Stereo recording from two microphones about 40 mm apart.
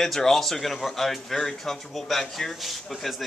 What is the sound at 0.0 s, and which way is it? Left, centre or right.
Speech, centre.